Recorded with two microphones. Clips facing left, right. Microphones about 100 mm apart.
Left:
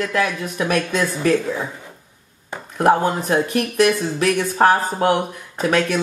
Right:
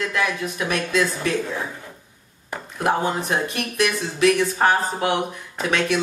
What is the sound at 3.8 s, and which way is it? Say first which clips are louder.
Speech: left 2 dB; 40° left (ahead or behind).